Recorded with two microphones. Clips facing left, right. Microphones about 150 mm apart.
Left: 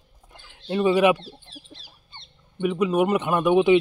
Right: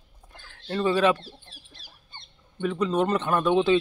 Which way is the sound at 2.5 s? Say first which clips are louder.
Left 3 dB; 15° left (ahead or behind).